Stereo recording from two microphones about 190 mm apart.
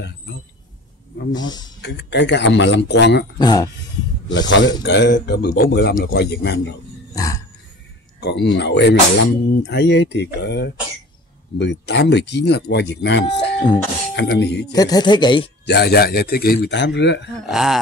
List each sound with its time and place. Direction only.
1.3 s speech: 20° left (ahead or behind)
1.8 s speech: 65° left (ahead or behind)
3.3 s speech: 20° left (ahead or behind)
4.3 s speech: 75° left (ahead or behind)
7.2 s music: 20° left (ahead or behind)
8.2 s speech: 65° left (ahead or behind)
14.7 s speech: 20° left (ahead or behind)
15.6 s speech: 60° left (ahead or behind)
17.5 s a sound: centre (ahead or behind)